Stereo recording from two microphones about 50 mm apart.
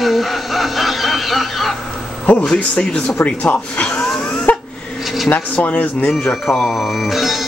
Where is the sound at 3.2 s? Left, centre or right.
Left.